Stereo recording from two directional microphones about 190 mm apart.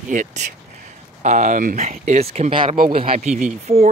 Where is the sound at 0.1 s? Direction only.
40° right (ahead or behind).